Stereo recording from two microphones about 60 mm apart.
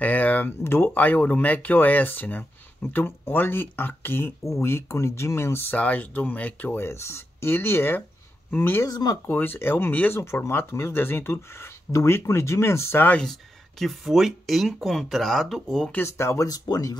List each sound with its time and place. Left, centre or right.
0.0 s a sound: left
0.9 s speech: left
4.8 s speech: left
5.8 s speech: left
6.8 s speech: left
8.8 s speech: left
9.3 s speech: left
10.2 s speech: left
13.2 s speech: centre
16.0 s speech: left
16.4 s speech: left